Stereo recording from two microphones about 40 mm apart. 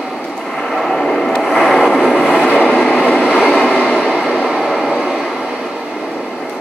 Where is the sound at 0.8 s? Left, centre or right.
Centre.